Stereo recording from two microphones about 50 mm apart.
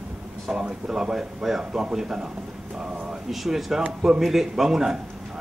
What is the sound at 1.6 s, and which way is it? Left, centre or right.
Speech, centre.